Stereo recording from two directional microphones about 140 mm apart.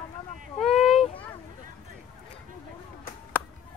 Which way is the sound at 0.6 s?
5° left (ahead or behind).